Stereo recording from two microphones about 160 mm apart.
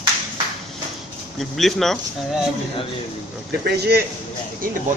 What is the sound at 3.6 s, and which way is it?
Speech, 85° right.